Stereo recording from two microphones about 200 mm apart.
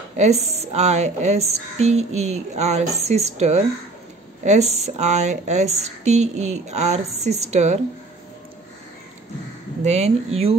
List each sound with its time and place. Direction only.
0.2 s a woman's voice: 30° right (ahead or behind)
9.8 s a woman's voice: 35° right (ahead or behind)